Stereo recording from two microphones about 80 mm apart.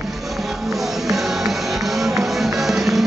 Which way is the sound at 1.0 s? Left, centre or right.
Centre.